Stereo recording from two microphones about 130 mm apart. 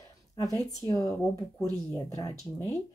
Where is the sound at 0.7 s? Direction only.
25° left (ahead or behind).